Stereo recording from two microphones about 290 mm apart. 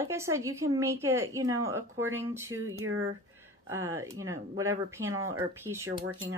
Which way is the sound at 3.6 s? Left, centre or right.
Centre.